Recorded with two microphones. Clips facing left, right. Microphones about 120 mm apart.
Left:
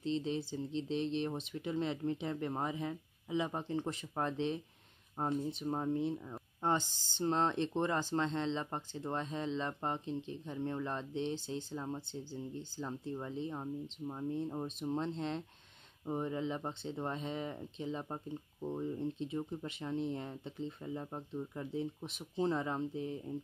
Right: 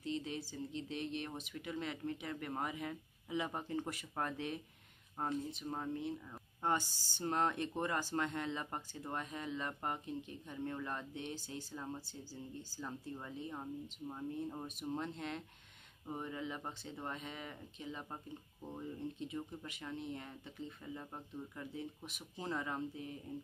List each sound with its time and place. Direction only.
0.0 s speech: 30° left (ahead or behind)